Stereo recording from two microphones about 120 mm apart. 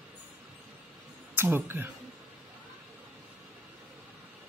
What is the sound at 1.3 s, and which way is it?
Speech, 20° right (ahead or behind).